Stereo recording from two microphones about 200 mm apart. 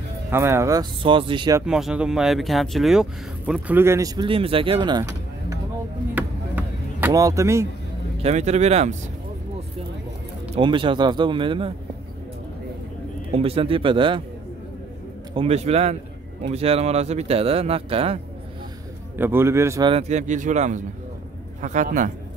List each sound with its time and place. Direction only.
0.3 s speech: 15° right (ahead or behind)
1.7 s speech: 5° right (ahead or behind)
6.1 s chop: 10° right (ahead or behind)
8.2 s speech: 35° right (ahead or behind)
10.5 s speech: 25° right (ahead or behind)
13.3 s speech: 30° right (ahead or behind)
15.3 s speech: 30° right (ahead or behind)
19.1 s speech: 10° right (ahead or behind)
19.9 s speech: 35° right (ahead or behind)